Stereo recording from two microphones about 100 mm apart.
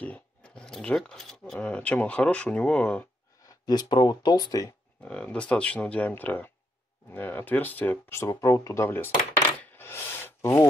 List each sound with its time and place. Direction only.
0.0 s speech: 10° left (ahead or behind)
3.4 s speech: 40° left (ahead or behind)
5.0 s speech: 15° left (ahead or behind)
9.7 s gasp: 25° left (ahead or behind)